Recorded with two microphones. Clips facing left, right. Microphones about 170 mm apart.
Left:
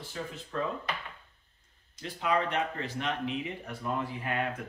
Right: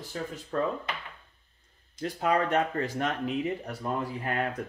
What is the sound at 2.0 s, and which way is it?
Speech, 45° right (ahead or behind).